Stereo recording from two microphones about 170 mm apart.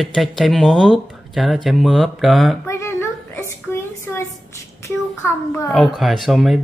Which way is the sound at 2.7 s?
15° left (ahead or behind).